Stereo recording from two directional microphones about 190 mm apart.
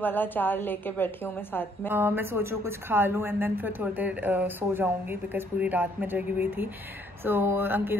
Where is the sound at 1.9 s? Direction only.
10° right (ahead or behind).